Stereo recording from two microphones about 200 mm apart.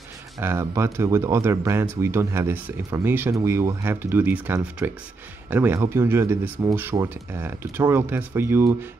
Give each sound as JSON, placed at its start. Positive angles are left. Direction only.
{"t": 0.4, "sound": "speech", "side_deg": -15}